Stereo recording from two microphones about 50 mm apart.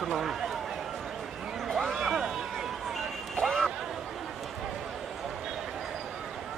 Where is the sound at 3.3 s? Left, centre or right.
Centre.